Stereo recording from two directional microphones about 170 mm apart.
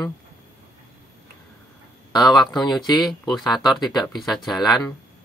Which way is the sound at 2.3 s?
Centre (ahead or behind).